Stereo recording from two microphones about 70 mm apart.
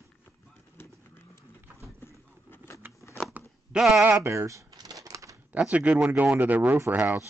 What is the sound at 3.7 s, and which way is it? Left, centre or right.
Speech, centre.